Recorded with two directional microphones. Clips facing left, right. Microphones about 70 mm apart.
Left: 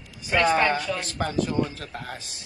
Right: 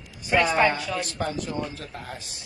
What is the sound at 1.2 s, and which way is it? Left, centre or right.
Speech, left.